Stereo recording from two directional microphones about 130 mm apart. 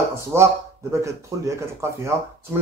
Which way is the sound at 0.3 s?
20° right (ahead or behind).